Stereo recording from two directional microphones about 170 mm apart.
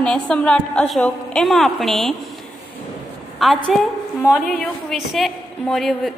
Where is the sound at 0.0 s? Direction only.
5° left (ahead or behind).